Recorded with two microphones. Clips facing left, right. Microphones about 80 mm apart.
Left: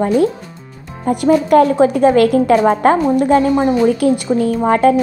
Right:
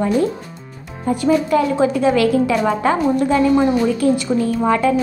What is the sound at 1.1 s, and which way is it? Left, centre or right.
A woman's voice, left.